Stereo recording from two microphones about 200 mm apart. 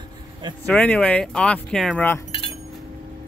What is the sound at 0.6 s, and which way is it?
Speech, 5° left (ahead or behind).